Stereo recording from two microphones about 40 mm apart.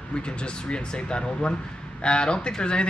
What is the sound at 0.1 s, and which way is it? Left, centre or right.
Speech, left.